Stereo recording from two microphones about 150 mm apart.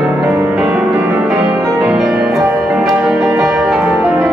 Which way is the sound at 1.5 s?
20° right (ahead or behind).